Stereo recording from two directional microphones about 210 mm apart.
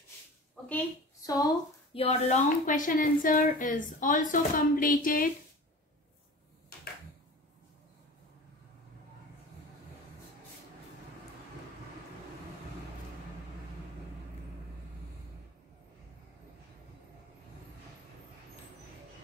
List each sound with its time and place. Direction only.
1.2 s speech: 15° left (ahead or behind)
2.0 s a woman's voice: 30° left (ahead or behind)